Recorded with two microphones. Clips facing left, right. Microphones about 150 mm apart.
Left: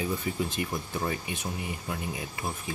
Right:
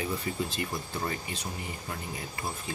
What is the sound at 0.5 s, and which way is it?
Speech, 20° left (ahead or behind).